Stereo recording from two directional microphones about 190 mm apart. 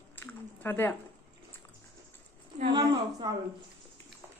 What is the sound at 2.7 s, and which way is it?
Speech, 20° right (ahead or behind).